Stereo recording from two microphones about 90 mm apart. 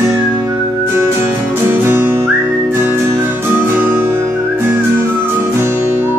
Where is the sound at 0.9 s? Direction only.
25° right (ahead or behind).